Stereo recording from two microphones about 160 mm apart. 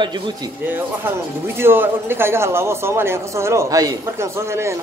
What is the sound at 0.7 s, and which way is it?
A man's voice, 15° right (ahead or behind).